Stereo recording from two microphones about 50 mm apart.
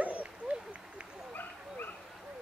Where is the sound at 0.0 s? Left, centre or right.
Right.